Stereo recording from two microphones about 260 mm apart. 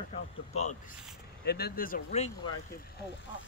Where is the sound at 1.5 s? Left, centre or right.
Left.